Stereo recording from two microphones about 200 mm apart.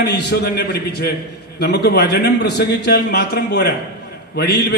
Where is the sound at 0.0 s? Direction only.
55° left (ahead or behind).